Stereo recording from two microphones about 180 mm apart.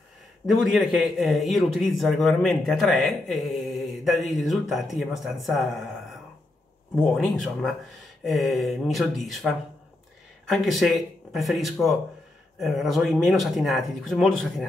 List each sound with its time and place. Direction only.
0.4 s a man's voice: 15° left (ahead or behind)
0.7 s a man's voice: centre (ahead or behind)
7.0 s a man's voice: 5° left (ahead or behind)
10.5 s a man's voice: centre (ahead or behind)